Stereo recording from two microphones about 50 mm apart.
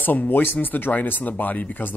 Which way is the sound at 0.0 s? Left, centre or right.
Left.